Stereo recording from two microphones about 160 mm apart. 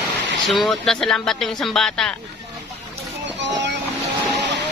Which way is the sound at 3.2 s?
90° right.